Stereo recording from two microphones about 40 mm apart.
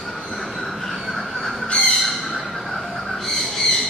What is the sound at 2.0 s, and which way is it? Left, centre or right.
Squawk, centre.